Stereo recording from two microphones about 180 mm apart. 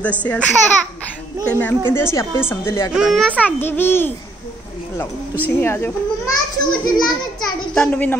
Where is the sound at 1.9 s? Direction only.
15° left (ahead or behind).